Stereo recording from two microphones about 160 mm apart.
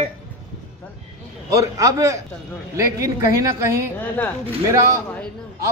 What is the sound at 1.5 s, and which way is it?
A man's voice, 20° right (ahead or behind).